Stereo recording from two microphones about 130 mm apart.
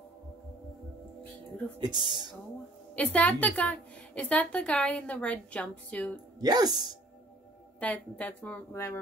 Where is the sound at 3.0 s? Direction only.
10° left (ahead or behind).